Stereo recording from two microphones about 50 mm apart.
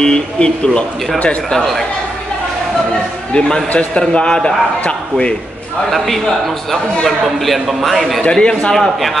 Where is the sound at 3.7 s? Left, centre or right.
Left.